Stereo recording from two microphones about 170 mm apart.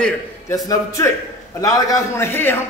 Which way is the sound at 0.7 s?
15° left (ahead or behind).